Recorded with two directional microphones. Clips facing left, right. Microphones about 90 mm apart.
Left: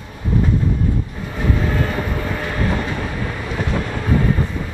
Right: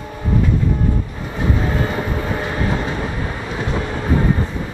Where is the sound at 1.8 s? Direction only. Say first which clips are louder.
Right 1 dB; 20° right (ahead or behind).